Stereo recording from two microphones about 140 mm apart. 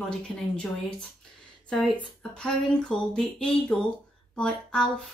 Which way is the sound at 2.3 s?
5° left (ahead or behind).